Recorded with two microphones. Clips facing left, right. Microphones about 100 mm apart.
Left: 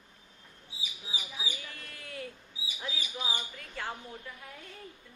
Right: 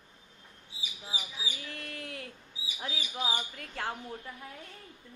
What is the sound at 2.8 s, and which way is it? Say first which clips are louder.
Speech: right 2 dB; 50° right (ahead or behind).